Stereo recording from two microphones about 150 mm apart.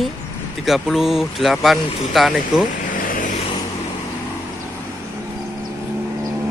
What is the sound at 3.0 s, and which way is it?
Vehicle, 65° left (ahead or behind).